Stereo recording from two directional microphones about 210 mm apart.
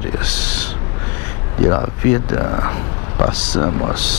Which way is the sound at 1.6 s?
20° left (ahead or behind).